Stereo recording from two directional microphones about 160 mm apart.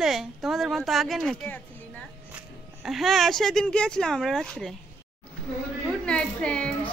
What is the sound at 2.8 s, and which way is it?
A woman's voice, centre (ahead or behind).